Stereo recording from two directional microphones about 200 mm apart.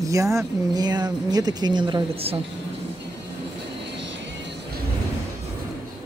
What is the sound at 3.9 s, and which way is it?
Music, 65° right (ahead or behind).